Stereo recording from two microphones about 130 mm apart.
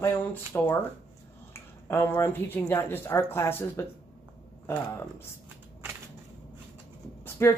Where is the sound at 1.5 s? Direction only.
20° left (ahead or behind).